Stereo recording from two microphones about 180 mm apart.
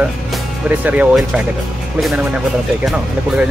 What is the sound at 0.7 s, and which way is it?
Speech, 10° right (ahead or behind).